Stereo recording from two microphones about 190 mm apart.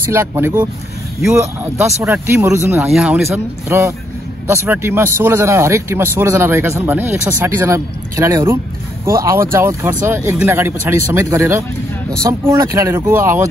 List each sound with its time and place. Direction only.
0.1 s speech: 15° right (ahead or behind)
2.9 s speech: centre (ahead or behind)
3.3 s speech: 15° right (ahead or behind)